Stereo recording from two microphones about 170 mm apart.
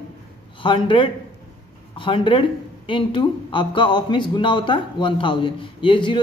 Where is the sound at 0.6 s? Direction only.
30° left (ahead or behind).